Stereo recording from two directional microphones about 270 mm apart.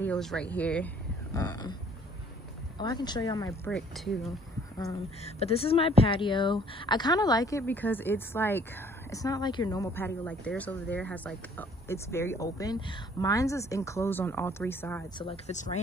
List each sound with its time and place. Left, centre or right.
0.0 s speech: centre
2.8 s speech: centre
3.7 s speech: centre
4.7 s speech: left
15.2 s speech: left